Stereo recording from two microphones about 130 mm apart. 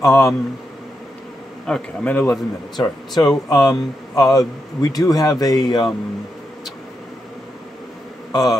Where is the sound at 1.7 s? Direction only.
15° left (ahead or behind).